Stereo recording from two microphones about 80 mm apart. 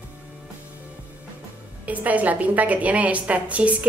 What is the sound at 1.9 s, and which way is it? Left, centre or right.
A woman's voice, centre.